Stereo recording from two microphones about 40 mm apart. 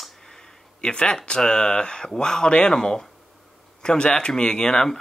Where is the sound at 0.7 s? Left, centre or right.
Left.